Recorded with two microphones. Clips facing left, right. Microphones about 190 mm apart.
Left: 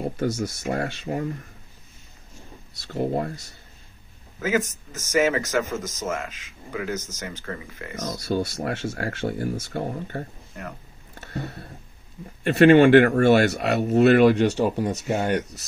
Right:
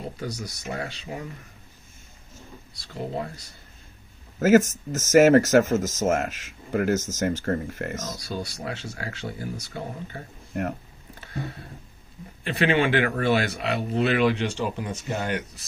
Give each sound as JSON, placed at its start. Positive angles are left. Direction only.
{"t": 0.2, "sound": "speech", "side_deg": 45}
{"t": 2.9, "sound": "speech", "side_deg": 45}
{"t": 4.4, "sound": "speech", "side_deg": -45}
{"t": 8.1, "sound": "speech", "side_deg": 45}
{"t": 10.5, "sound": "speech", "side_deg": -60}
{"t": 12.4, "sound": "speech", "side_deg": 45}